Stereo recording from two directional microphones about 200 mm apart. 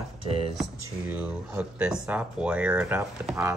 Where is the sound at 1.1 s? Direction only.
5° right (ahead or behind).